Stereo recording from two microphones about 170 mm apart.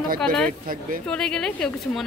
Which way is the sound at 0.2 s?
5° left (ahead or behind).